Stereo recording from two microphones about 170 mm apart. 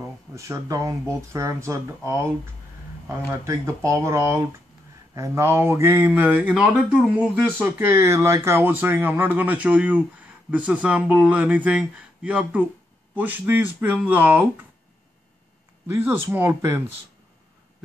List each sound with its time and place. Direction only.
0.3 s speech: 20° right (ahead or behind)
7.6 s speech: 15° right (ahead or behind)
15.9 s speech: 15° right (ahead or behind)